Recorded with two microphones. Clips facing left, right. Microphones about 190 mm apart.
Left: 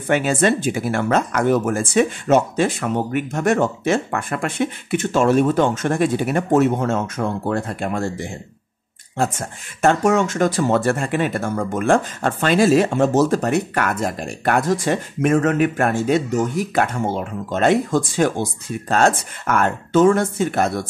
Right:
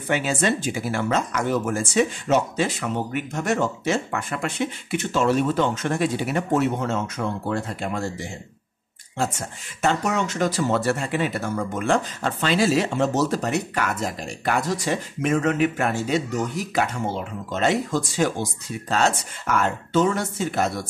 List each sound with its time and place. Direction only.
0.1 s speech: 50° left (ahead or behind)
9.8 s speech: 50° left (ahead or behind)